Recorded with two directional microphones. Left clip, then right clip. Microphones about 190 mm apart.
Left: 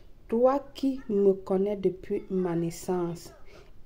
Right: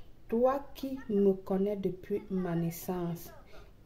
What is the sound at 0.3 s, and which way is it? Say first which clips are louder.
Speech: left 5 dB; 30° left (ahead or behind).